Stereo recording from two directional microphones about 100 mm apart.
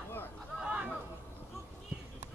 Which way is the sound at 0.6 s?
10° right (ahead or behind).